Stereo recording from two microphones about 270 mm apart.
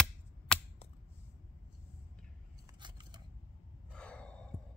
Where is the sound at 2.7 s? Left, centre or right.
Centre.